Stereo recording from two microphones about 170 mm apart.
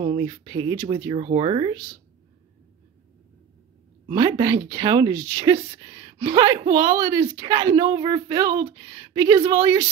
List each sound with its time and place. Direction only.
0.0 s a woman's voice: 25° right (ahead or behind)
1.1 s speech: 35° right (ahead or behind)
4.1 s a woman's voice: 25° right (ahead or behind)